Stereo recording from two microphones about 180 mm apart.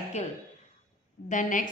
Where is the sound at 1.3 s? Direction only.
45° left (ahead or behind).